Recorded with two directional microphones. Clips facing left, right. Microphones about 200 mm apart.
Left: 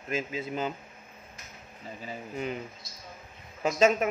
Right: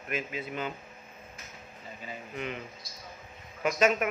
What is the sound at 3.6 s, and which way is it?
Speech, 25° left (ahead or behind).